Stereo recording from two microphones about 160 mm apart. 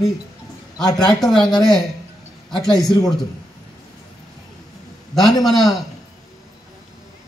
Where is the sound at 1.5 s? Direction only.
25° left (ahead or behind).